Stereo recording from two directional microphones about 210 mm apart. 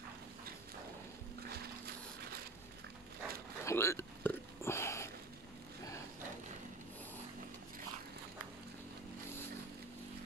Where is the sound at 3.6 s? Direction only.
15° left (ahead or behind).